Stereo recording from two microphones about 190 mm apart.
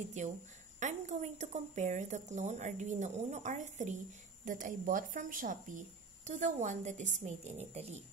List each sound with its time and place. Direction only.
0.2 s speech: 40° right (ahead or behind)